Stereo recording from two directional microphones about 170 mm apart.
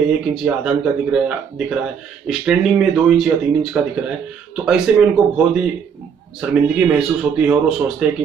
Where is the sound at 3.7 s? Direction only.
10° right (ahead or behind).